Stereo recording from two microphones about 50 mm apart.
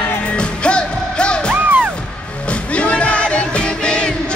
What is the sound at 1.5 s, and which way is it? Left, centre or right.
Music, right.